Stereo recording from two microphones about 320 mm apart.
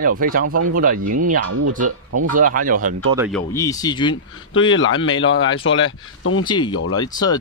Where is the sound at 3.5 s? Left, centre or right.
Centre.